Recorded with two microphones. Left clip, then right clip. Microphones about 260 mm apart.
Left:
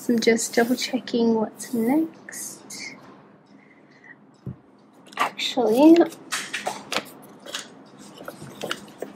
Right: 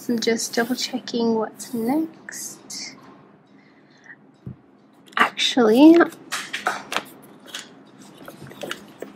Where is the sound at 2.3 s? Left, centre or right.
Centre.